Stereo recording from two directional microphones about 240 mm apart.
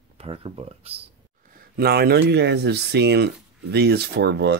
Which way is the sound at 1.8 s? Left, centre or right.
Right.